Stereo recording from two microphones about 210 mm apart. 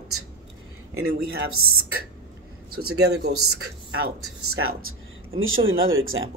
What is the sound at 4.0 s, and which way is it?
Speech, 90° right.